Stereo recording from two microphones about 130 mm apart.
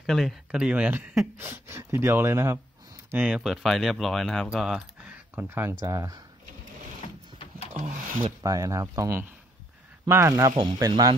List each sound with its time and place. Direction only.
0.0 s speech: centre (ahead or behind); by 2.6 s 20° right (ahead or behind)
3.1 s speech: 10° right (ahead or behind); by 6.2 s 25° right (ahead or behind)
7.3 s a sound: 50° left (ahead or behind)
8.4 s speech: 25° right (ahead or behind)
10.5 s speech: 35° right (ahead or behind)